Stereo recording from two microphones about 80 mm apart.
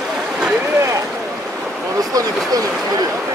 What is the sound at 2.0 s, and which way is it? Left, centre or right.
Speech, right.